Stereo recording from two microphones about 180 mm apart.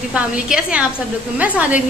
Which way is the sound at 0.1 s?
5° right (ahead or behind).